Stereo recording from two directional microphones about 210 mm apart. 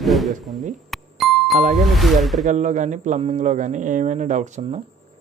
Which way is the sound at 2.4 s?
35° right (ahead or behind).